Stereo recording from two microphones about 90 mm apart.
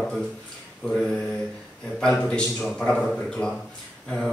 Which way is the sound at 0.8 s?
Centre (ahead or behind).